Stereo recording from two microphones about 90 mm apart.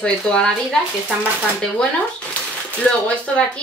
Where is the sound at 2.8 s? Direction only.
10° left (ahead or behind).